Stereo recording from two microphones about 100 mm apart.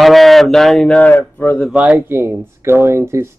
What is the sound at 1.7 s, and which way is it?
Speech, 15° right (ahead or behind).